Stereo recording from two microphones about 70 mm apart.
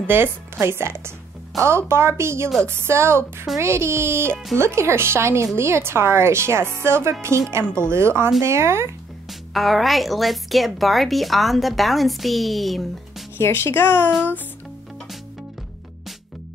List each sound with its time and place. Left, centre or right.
0.0 s speech: right
9.3 s speech: centre
13.4 s speech: left